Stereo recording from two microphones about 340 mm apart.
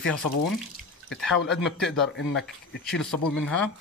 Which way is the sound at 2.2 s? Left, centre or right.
Left.